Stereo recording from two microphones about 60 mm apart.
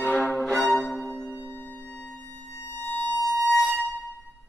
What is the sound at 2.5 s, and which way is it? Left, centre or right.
Music, left.